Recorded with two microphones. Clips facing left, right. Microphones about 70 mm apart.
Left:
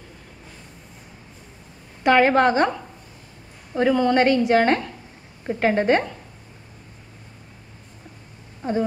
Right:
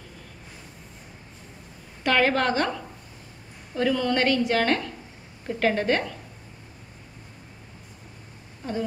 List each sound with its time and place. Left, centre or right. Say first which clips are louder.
2.0 s a woman's voice: left 6 dB; left